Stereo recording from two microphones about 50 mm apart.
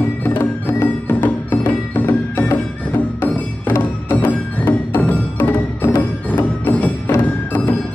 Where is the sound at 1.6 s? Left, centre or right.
Left.